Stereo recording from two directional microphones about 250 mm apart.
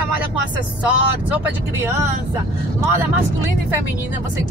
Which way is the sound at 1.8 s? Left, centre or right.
Centre.